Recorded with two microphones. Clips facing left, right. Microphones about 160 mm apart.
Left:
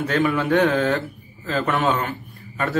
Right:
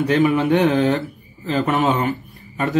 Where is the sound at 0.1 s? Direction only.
15° right (ahead or behind).